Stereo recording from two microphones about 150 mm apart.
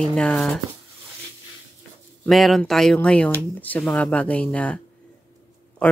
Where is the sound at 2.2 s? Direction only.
Centre (ahead or behind).